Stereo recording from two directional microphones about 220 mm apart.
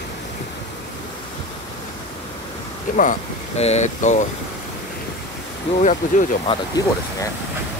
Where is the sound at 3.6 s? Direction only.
30° left (ahead or behind).